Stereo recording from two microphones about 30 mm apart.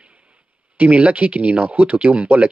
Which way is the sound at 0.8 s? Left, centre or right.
Right.